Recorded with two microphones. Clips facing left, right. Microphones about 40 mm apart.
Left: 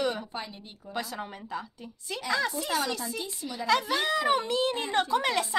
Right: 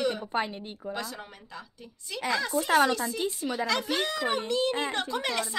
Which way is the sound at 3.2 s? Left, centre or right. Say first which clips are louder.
Right 7 dB; right.